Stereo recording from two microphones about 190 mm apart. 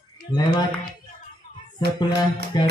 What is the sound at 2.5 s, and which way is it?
Speech, 20° left (ahead or behind).